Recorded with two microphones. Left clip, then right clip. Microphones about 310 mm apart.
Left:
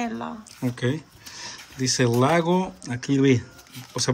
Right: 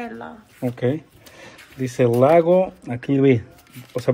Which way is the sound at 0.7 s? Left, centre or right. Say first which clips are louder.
Right 6 dB; centre.